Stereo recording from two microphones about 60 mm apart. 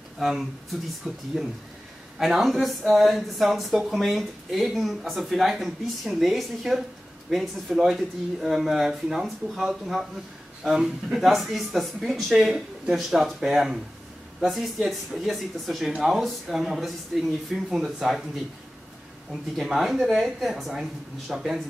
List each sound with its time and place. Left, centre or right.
0.2 s speech: centre
19.5 s speech: centre